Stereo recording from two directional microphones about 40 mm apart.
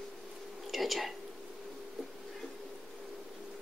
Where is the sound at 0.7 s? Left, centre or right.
Centre.